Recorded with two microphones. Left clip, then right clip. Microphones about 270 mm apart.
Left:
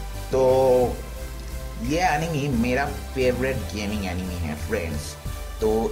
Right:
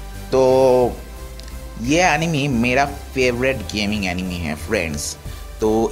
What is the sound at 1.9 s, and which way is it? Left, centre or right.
Speech, centre.